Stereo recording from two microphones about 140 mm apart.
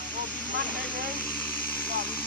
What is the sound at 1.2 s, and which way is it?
Vehicle, 10° left (ahead or behind).